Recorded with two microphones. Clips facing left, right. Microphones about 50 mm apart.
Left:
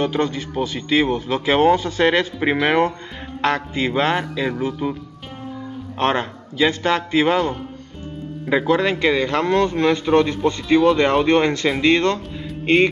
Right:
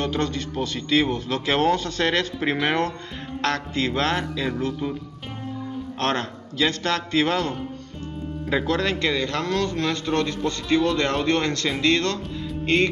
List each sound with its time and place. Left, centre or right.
0.0 s a man's voice: centre
5.9 s a man's voice: centre